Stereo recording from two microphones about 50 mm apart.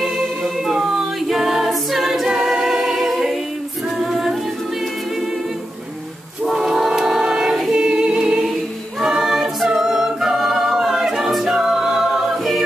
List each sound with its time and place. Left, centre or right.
0.4 s a capella: centre
2.2 s a capella: centre
4.0 s music: centre
6.4 s choir: centre
7.7 s singing: centre
9.0 s a capella: centre